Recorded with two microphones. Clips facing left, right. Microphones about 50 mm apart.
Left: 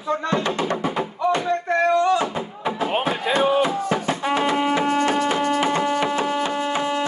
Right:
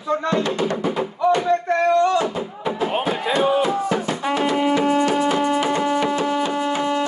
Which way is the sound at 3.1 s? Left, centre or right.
Left.